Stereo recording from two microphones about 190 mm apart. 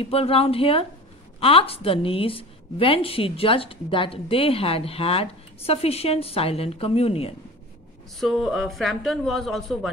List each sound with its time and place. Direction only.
0.0 s a woman's voice: 30° left (ahead or behind)
8.2 s a man's voice: centre (ahead or behind)